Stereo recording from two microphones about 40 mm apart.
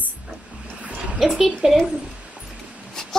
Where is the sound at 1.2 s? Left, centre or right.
Centre.